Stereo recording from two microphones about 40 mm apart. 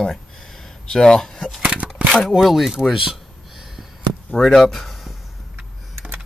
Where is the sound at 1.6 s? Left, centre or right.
Right.